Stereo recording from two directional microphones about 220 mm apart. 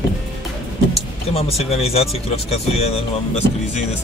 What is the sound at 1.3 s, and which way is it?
Speech, 25° left (ahead or behind).